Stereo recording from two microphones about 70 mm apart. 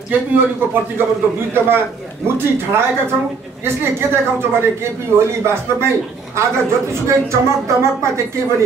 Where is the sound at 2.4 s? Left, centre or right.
Right.